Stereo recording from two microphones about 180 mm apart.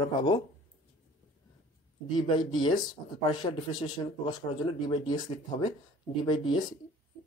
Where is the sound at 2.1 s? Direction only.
25° left (ahead or behind).